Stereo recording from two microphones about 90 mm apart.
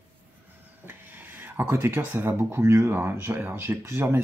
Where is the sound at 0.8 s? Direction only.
20° right (ahead or behind).